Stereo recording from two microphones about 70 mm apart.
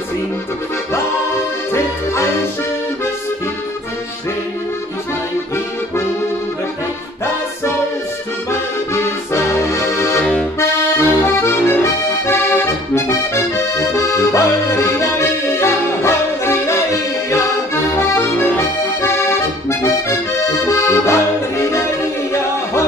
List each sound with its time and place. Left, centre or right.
8.5 s accordion: left
17.9 s accordion: left
20.6 s accordion: left